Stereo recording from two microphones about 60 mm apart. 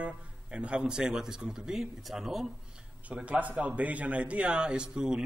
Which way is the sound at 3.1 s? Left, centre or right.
Right.